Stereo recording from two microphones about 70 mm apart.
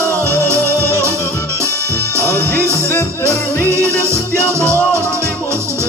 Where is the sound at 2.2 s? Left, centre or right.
Left.